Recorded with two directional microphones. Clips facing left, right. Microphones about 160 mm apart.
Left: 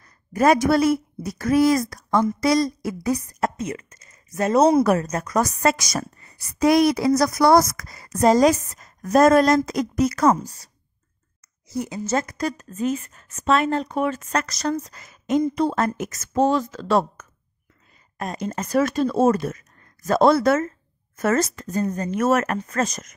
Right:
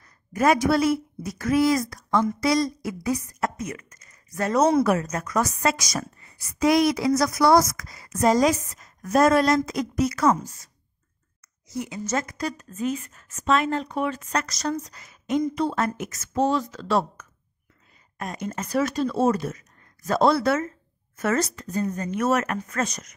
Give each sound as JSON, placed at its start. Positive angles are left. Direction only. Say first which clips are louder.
{"t": 0.0, "sound": "a woman's voice", "louder": "left 3 dB", "side_deg": 40}
{"t": 4.6, "sound": "a woman's voice", "louder": "left 3 dB", "side_deg": 35}
{"t": 7.4, "sound": "a woman's voice", "louder": "left 2 dB", "side_deg": 50}
{"t": 18.1, "sound": "speech", "louder": "left 3 dB", "side_deg": 35}